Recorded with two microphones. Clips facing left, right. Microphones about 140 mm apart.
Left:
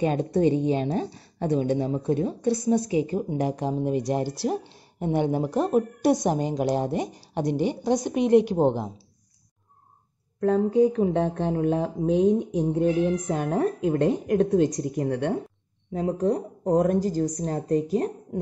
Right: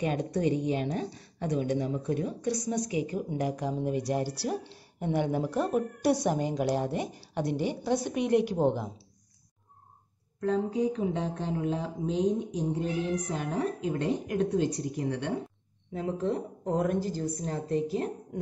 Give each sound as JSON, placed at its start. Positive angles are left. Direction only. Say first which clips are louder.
{"t": 0.0, "sound": "a woman's voice", "louder": "left 6 dB", "side_deg": 30}
{"t": 10.4, "sound": "a woman's voice", "louder": "left 8 dB", "side_deg": 60}